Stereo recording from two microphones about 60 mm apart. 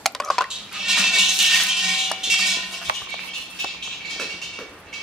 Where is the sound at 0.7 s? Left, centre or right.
Centre.